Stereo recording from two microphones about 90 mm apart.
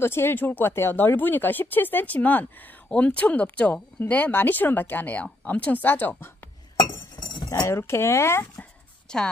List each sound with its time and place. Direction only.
0.0 s speech: 25° left (ahead or behind)
7.2 s speech: 60° left (ahead or behind); by 8.5 s 30° left (ahead or behind)
9.1 s a woman's voice: 10° left (ahead or behind)